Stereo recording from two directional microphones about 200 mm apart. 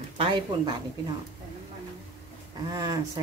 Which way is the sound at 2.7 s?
20° right (ahead or behind).